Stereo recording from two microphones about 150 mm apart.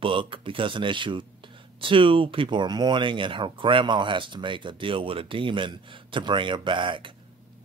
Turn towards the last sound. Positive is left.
turn(degrees=-35)  # may be behind; listen again after turning